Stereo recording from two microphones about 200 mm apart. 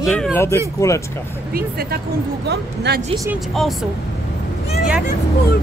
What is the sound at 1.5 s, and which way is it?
Speech, 50° right (ahead or behind).